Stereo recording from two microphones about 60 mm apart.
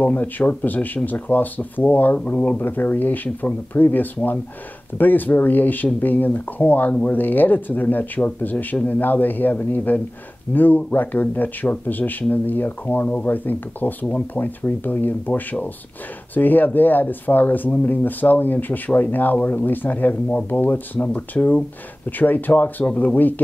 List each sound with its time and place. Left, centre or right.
0.0 s speech: left
2.6 s speech: left